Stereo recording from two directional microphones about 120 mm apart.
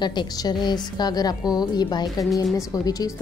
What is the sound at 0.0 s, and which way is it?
A woman's voice, 40° left (ahead or behind).